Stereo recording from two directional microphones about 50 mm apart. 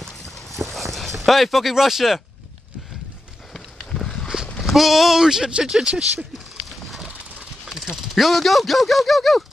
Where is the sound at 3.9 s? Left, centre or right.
Centre.